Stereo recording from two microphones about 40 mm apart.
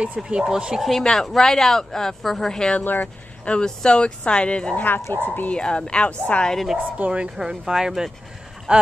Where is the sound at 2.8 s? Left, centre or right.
Left.